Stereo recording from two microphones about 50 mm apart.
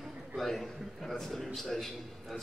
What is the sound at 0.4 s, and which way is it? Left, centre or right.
A man's voice, centre.